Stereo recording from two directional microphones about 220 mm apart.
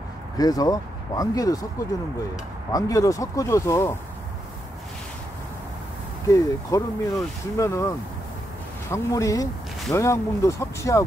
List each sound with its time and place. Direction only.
0.4 s speech: 15° left (ahead or behind)
2.7 s speech: 15° left (ahead or behind)
6.2 s speech: 15° left (ahead or behind)
8.9 s speech: 15° left (ahead or behind)